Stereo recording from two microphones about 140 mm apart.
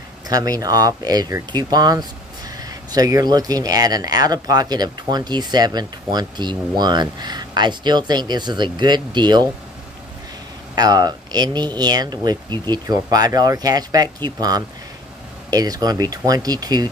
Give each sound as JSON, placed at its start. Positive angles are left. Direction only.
{"t": 0.3, "sound": "speech", "side_deg": -25}
{"t": 10.7, "sound": "speech", "side_deg": -30}